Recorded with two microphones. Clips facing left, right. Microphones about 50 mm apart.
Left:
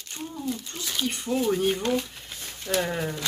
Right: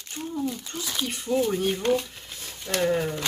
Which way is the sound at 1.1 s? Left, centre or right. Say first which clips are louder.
Right 1 dB; centre.